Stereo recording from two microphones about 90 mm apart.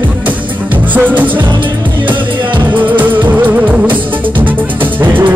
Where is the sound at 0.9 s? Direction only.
20° right (ahead or behind).